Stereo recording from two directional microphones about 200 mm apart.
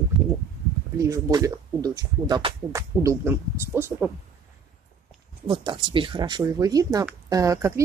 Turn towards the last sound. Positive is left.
turn(degrees=-15)  # may be behind; listen again after turning